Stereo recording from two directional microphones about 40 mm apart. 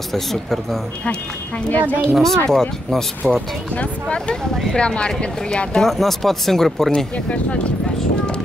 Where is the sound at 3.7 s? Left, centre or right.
Left.